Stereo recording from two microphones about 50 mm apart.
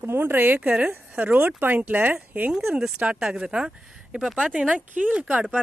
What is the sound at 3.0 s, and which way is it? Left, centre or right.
Speech, right.